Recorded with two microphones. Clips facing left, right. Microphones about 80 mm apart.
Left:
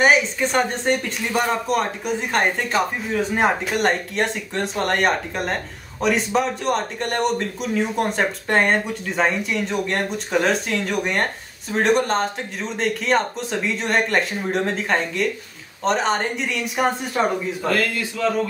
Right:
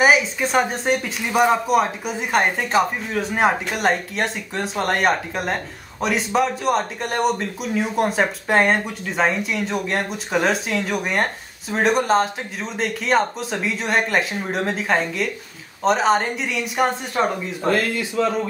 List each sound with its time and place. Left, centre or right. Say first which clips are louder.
0.0 s speech: even; centre
17.6 s speech: right 3 dB; right